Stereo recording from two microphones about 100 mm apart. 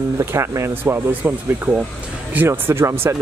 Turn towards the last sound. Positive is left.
turn(degrees=-25)  # may be behind; listen again after turning